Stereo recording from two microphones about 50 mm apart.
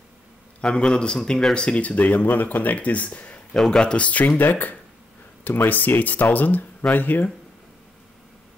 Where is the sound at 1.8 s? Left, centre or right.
Left.